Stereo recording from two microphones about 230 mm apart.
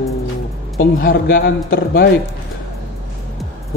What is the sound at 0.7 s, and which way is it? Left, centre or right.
A man's voice, left.